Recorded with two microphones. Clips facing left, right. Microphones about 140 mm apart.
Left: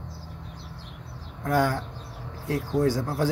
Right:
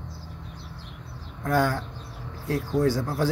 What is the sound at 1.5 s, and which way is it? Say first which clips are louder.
Speech: even; 15° left (ahead or behind).